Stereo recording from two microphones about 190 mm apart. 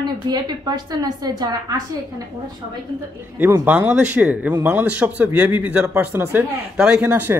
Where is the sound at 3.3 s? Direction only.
10° right (ahead or behind).